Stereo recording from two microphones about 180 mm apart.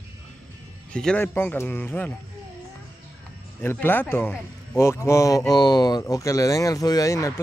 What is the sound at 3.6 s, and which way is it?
A man's voice, 10° left (ahead or behind).